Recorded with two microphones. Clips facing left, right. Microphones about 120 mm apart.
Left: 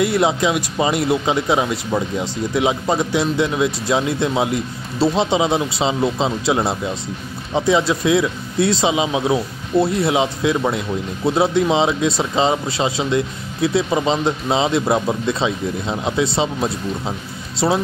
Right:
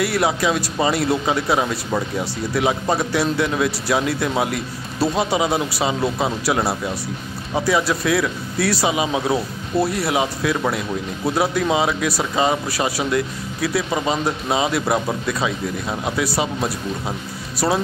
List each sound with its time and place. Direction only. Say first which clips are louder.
0.0 s speech: left 3 dB; 20° left (ahead or behind)
17.6 s speech: left 2 dB; 15° left (ahead or behind)